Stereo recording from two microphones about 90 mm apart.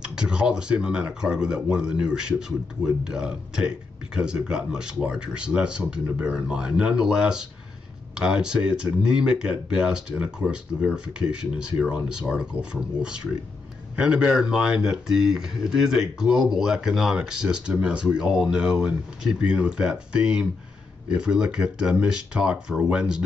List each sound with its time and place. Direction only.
0.0 s speech: 10° right (ahead or behind)